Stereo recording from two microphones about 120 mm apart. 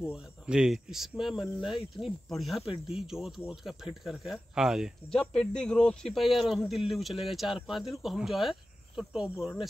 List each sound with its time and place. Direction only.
0.1 s speech: 5° right (ahead or behind)
1.7 s cricket: 45° left (ahead or behind)
2.0 s speech: centre (ahead or behind)
2.6 s cricket: 45° left (ahead or behind)
3.0 s speech: 5° right (ahead or behind)
5.2 s speech: 5° left (ahead or behind)